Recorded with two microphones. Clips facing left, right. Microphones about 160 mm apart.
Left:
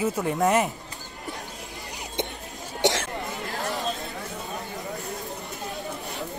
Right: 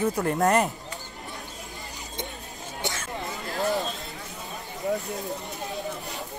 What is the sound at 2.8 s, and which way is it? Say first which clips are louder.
Throat clearing: left 10 dB; 75° left (ahead or behind).